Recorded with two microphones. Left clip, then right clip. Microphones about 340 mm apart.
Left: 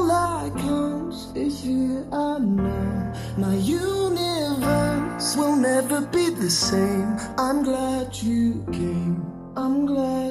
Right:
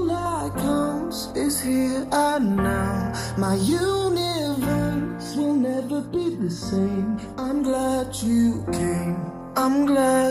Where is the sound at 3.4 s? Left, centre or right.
Centre.